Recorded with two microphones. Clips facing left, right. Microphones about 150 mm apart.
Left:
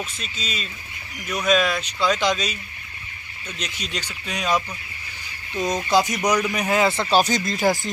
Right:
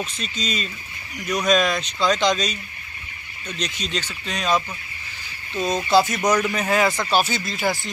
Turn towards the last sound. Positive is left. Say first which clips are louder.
# left 4 dB
turn(degrees=-5)  # may be behind; listen again after turning